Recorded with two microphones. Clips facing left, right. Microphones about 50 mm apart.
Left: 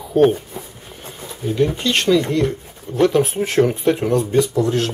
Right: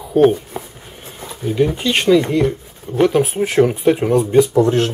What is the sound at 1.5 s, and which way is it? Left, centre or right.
Speech, centre.